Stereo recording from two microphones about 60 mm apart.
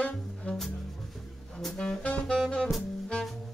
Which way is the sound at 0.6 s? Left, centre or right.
Centre.